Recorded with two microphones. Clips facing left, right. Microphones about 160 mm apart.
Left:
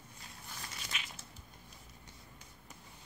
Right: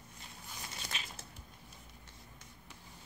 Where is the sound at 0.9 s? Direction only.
30° right (ahead or behind).